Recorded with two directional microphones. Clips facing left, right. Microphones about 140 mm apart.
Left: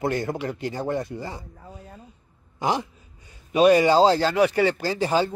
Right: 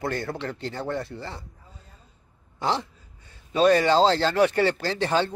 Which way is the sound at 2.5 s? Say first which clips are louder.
Left 2 dB; 15° left (ahead or behind).